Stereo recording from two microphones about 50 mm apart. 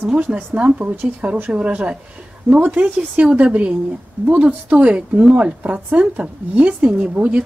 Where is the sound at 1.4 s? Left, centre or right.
Right.